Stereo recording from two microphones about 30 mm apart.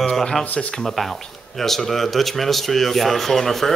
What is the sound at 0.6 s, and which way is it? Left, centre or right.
Speech, left.